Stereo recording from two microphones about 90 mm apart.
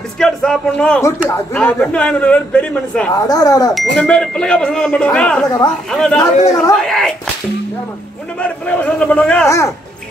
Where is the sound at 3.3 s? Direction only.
45° left (ahead or behind).